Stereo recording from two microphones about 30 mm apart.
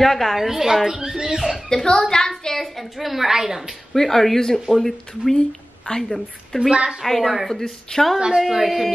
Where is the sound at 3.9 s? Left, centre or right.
Centre.